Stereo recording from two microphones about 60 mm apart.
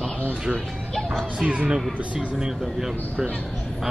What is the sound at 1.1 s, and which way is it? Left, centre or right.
A child's voice, centre.